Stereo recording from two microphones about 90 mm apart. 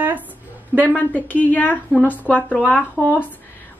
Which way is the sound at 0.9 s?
15° left (ahead or behind).